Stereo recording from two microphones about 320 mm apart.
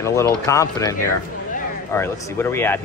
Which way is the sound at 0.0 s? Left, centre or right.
Centre.